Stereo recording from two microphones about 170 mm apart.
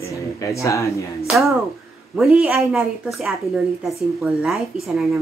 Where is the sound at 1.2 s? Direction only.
5° right (ahead or behind).